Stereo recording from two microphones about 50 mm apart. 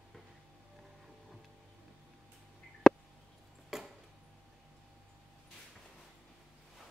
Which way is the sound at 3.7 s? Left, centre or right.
Centre.